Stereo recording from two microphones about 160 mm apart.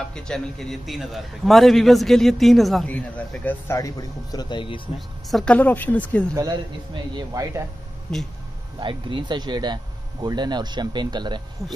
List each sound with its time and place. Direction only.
0.0 s a man's voice: 5° left (ahead or behind); by 4.8 s 30° left (ahead or behind)
5.3 s a woman's voice: 5° left (ahead or behind)
6.3 s a man's voice: 25° right (ahead or behind)
8.1 s a man's voice: 5° left (ahead or behind)
8.7 s a man's voice: 30° right (ahead or behind)